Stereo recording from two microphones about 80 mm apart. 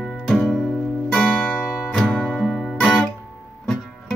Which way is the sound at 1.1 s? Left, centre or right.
Centre.